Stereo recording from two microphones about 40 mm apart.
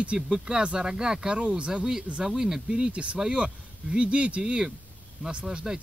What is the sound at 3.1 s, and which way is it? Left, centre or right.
Speech, right.